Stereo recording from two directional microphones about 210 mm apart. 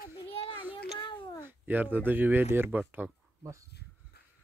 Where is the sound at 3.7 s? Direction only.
50° left (ahead or behind).